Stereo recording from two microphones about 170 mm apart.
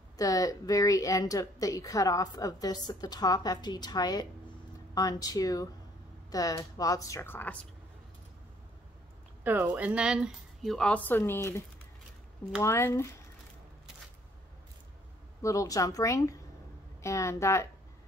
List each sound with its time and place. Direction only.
0.2 s a woman's voice: 20° left (ahead or behind)
9.4 s speech: 10° right (ahead or behind); by 11.6 s 15° left (ahead or behind)
12.6 s speech: 15° left (ahead or behind)
15.4 s a woman's voice: 20° left (ahead or behind)